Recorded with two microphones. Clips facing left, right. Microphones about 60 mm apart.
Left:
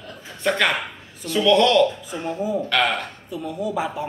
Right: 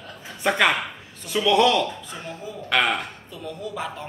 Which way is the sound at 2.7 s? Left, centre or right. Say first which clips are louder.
Right 3 dB; centre.